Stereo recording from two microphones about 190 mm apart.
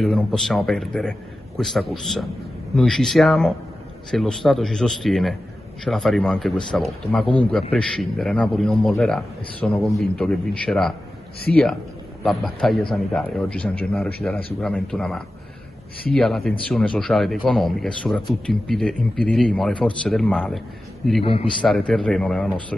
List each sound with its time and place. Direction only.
0.0 s a man's voice: centre (ahead or behind)
21.2 s a man's voice: 30° left (ahead or behind)
21.5 s a man's voice: 5° left (ahead or behind)